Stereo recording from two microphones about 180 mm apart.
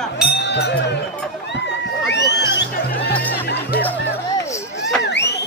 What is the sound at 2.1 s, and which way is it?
Music, 70° left (ahead or behind).